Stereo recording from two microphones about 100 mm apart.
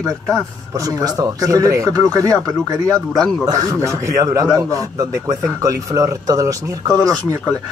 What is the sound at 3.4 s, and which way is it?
Speech, 35° right (ahead or behind).